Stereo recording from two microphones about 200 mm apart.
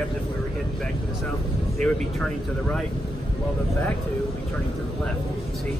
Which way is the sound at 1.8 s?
5° left (ahead or behind).